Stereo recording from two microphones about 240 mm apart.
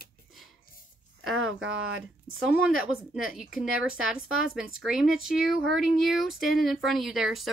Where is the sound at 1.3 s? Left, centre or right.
Right.